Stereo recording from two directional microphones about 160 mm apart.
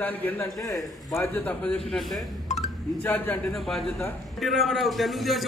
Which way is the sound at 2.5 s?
45° left (ahead or behind).